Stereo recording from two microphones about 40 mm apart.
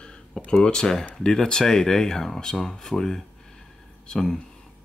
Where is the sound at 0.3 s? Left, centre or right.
Centre.